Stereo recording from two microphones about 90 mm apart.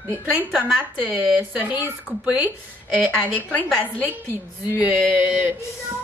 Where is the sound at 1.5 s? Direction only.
20° right (ahead or behind).